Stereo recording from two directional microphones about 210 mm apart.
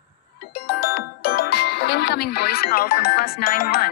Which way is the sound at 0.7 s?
50° left (ahead or behind).